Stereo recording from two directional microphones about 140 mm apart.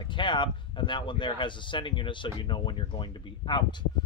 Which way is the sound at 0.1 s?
35° left (ahead or behind).